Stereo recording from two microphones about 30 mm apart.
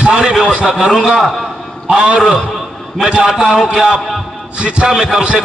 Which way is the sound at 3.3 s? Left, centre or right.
Right.